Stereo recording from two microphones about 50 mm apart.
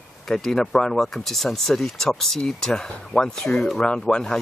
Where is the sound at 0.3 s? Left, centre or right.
Centre.